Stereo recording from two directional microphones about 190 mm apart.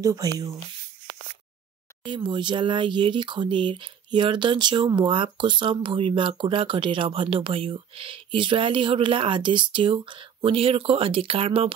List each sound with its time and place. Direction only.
0.0 s speech: 20° right (ahead or behind)
2.0 s speech: 25° right (ahead or behind)